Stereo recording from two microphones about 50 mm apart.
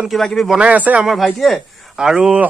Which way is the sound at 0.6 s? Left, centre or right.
Right.